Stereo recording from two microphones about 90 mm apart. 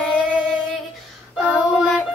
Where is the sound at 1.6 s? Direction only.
5° right (ahead or behind).